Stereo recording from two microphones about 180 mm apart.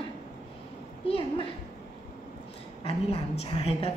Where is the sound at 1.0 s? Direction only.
30° left (ahead or behind).